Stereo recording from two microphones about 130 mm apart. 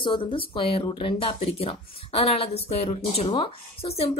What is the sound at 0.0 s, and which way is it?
Speech, 40° left (ahead or behind).